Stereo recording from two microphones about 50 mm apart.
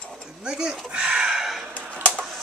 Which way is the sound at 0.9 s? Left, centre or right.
Centre.